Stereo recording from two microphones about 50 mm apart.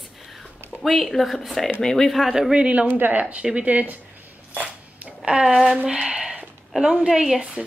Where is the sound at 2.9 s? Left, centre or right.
Right.